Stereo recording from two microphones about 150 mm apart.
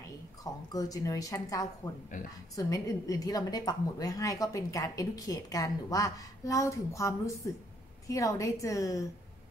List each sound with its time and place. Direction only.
0.4 s a woman's voice: 25° left (ahead or behind)
2.1 s a woman's voice: 60° left (ahead or behind)
2.5 s a woman's voice: 25° left (ahead or behind)